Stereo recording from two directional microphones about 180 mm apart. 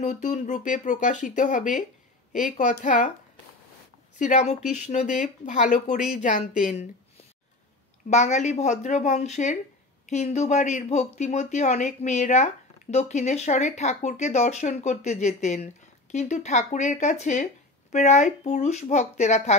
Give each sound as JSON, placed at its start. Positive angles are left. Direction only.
{"t": 0.0, "sound": "speech", "side_deg": 45}
{"t": 4.2, "sound": "a woman's voice", "side_deg": 40}